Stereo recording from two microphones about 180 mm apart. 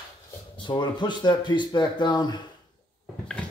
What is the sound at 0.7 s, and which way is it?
Speech, 25° left (ahead or behind).